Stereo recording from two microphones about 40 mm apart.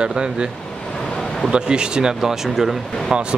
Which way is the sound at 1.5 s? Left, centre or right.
Right.